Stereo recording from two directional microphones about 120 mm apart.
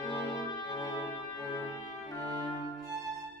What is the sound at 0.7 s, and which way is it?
Brass instrument, 30° left (ahead or behind).